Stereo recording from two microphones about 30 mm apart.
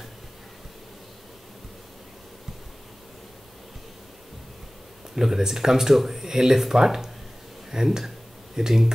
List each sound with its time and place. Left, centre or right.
5.1 s speech: centre